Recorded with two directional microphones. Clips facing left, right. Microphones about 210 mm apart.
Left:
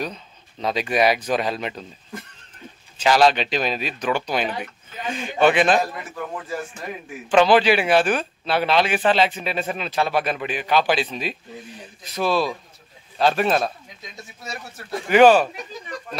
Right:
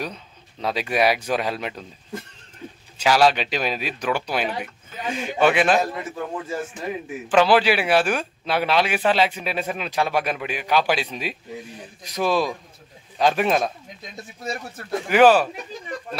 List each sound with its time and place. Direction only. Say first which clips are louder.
0.0 s speech: left 2 dB; 10° right (ahead or behind)
3.0 s speech: left 1 dB; 10° right (ahead or behind)
5.8 s a man's voice: right 1 dB; 25° right (ahead or behind)
7.2 s speech: left 2 dB; 5° right (ahead or behind)
15.0 s speech: left 2 dB; 5° right (ahead or behind)